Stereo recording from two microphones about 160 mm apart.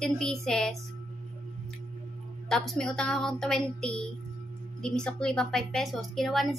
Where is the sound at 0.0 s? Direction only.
5° left (ahead or behind).